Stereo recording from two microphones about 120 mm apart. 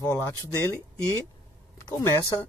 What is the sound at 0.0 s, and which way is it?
Speech, 20° left (ahead or behind).